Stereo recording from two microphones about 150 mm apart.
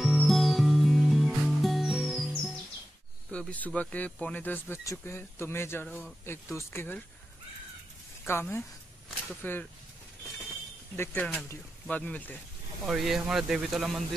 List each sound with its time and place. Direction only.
0.0 s music: centre (ahead or behind)
3.3 s speech: 10° left (ahead or behind)
5.9 s speech: 5° left (ahead or behind)
6.2 s speech: 15° left (ahead or behind)
8.3 s speech: 15° left (ahead or behind)
11.4 s speech: 15° left (ahead or behind)
12.8 s speech: centre (ahead or behind)